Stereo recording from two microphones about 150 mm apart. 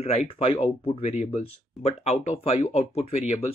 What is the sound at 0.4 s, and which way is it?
Speech, 40° left (ahead or behind).